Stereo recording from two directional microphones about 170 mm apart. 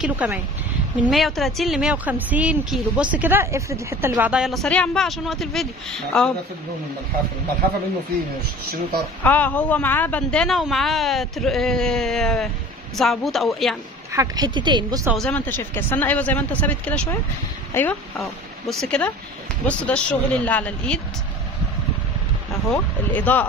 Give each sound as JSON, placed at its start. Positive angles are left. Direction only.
{"t": 0.0, "sound": "speech", "side_deg": -5}
{"t": 9.2, "sound": "speech", "side_deg": 10}
{"t": 14.1, "sound": "speech", "side_deg": -20}
{"t": 15.1, "sound": "speech", "side_deg": 10}
{"t": 18.2, "sound": "speech", "side_deg": 0}
{"t": 22.7, "sound": "speech", "side_deg": 10}